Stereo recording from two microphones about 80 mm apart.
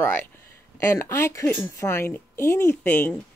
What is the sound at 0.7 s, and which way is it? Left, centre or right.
Speech, left.